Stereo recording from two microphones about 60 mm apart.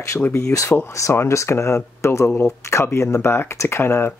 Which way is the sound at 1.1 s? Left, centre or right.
Left.